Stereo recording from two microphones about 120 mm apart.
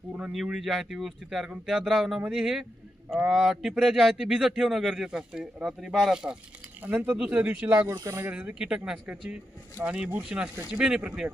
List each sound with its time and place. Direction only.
0.3 s a man's voice: centre (ahead or behind)
6.8 s speech: 15° right (ahead or behind)
8.3 s speech: 10° right (ahead or behind)